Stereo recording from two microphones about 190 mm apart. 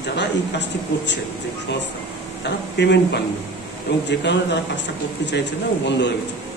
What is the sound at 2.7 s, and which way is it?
Speech, 65° left (ahead or behind).